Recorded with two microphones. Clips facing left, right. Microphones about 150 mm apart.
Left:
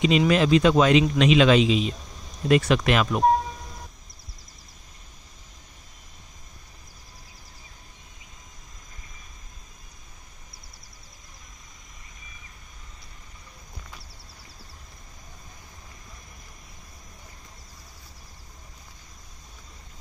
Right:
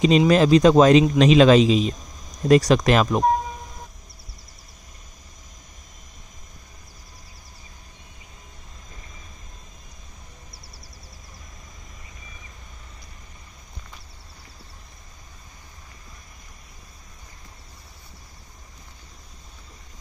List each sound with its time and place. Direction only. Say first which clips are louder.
0.3 s speech: right 5 dB; 40° right (ahead or behind)